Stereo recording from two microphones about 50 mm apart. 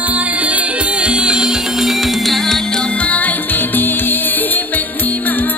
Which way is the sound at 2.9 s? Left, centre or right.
Left.